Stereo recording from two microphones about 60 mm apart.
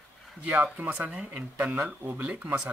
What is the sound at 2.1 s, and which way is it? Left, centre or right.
Speech, right.